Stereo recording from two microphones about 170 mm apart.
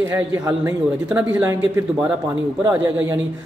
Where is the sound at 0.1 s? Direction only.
10° right (ahead or behind).